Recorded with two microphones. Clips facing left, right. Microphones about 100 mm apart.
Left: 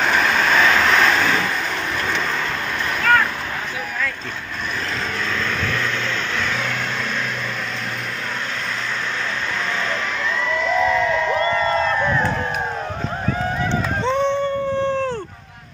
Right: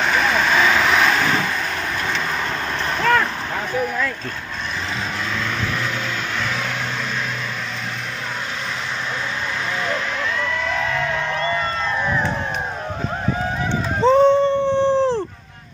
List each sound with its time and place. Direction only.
0.0 s vehicle: centre (ahead or behind)
14.0 s dog: 35° right (ahead or behind)